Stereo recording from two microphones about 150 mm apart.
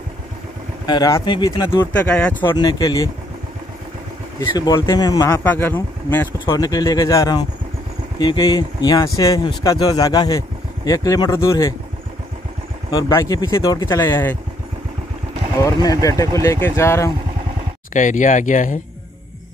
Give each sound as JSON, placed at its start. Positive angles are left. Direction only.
{"t": 0.8, "sound": "speech", "side_deg": 25}
{"t": 2.0, "sound": "speech", "side_deg": 10}
{"t": 2.5, "sound": "speech", "side_deg": 30}
{"t": 4.4, "sound": "speech", "side_deg": 20}
{"t": 5.4, "sound": "speech", "side_deg": 15}
{"t": 6.5, "sound": "speech", "side_deg": 25}
{"t": 12.9, "sound": "speech", "side_deg": 20}
{"t": 15.6, "sound": "speech", "side_deg": 25}
{"t": 17.9, "sound": "speech", "side_deg": 55}